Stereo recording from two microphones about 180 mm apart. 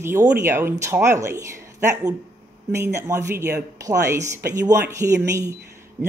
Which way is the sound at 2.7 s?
15° right (ahead or behind).